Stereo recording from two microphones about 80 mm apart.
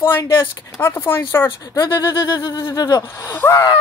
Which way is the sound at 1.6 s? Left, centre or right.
Left.